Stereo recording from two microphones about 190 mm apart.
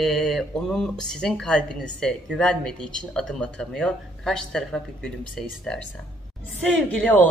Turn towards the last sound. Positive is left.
turn(degrees=5)  # may be behind; listen again after turning